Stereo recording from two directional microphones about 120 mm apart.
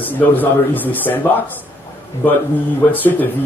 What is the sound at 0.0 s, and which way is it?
Speech, 15° left (ahead or behind).